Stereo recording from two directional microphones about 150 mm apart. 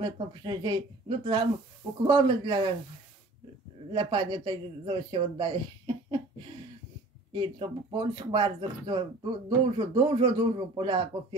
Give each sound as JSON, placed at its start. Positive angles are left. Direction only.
{"t": 0.0, "sound": "speech", "side_deg": -30}
{"t": 3.9, "sound": "speech", "side_deg": -30}
{"t": 7.3, "sound": "speech", "side_deg": -35}